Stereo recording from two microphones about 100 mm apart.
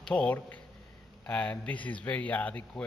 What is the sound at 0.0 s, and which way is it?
Speech, 10° left (ahead or behind).